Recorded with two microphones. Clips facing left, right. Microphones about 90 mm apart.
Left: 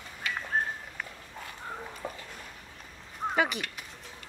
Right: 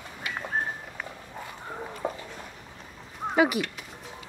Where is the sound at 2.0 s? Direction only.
45° right (ahead or behind).